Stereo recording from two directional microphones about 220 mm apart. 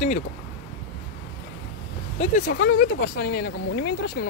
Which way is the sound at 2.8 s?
40° left (ahead or behind).